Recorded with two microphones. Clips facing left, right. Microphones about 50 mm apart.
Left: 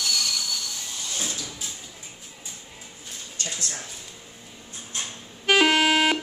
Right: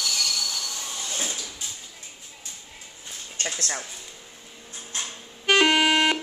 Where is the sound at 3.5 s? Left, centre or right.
Right.